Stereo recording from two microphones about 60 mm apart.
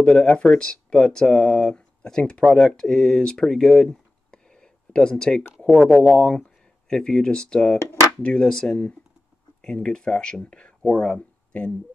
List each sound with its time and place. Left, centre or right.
0.0 s speech: centre
5.7 s speech: right
6.1 s speech: centre